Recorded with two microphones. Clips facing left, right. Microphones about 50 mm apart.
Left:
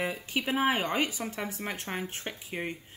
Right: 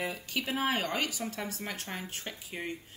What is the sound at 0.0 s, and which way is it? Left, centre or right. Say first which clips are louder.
Speech: left 3 dB; left.